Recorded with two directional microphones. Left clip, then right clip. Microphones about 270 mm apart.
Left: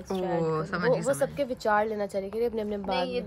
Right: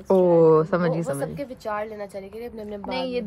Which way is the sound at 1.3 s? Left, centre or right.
Left.